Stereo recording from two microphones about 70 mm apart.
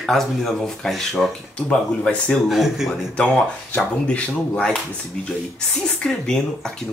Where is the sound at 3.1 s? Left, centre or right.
Centre.